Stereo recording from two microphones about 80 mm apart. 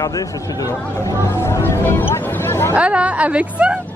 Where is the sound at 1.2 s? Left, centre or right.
Left.